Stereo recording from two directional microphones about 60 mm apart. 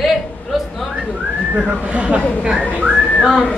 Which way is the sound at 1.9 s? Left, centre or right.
Centre.